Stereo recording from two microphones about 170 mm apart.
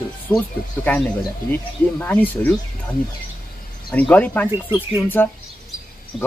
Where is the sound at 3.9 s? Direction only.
10° left (ahead or behind).